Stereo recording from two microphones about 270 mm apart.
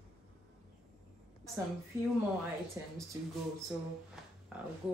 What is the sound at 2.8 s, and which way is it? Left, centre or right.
Speech, centre.